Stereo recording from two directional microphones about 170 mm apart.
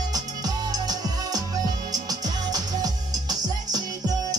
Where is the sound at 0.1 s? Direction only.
20° right (ahead or behind).